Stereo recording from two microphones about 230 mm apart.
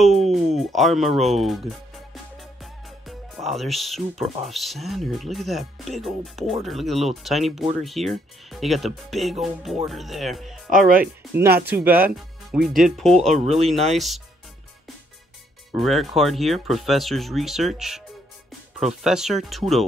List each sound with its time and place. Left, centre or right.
0.0 s speech: centre
10.7 s speech: right
11.6 s speech: centre
15.8 s speech: centre
19.0 s speech: centre